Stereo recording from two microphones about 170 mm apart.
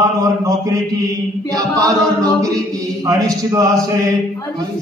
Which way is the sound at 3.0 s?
20° right (ahead or behind).